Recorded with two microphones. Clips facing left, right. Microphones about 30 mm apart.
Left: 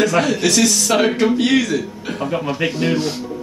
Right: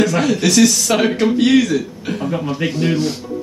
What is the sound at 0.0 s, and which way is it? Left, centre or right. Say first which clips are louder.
Speech: even; centre.